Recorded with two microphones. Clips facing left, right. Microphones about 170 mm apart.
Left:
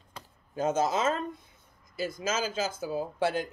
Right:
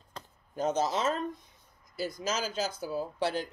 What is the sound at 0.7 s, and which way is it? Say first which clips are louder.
Speech: left 2 dB; 50° left (ahead or behind).